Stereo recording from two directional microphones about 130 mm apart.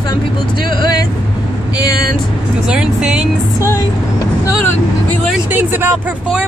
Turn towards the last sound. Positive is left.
turn(degrees=-15)  # may be behind; listen again after turning